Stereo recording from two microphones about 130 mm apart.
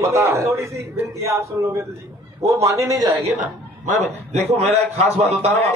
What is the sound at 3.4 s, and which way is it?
A man's voice, 70° right (ahead or behind).